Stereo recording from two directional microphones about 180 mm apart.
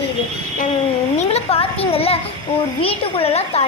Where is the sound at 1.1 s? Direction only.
35° left (ahead or behind).